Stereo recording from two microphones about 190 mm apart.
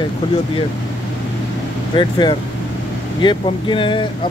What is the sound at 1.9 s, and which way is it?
Speech, 25° left (ahead or behind).